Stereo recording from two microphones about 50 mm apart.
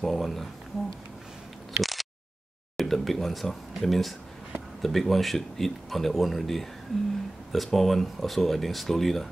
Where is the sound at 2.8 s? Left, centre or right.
Centre.